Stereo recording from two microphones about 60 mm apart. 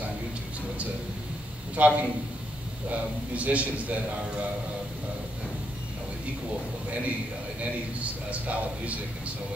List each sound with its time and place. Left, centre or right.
1.8 s a man's voice: right
8.0 s a man's voice: right